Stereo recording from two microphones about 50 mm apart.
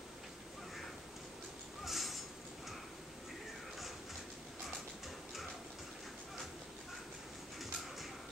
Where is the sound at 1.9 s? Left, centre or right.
Centre.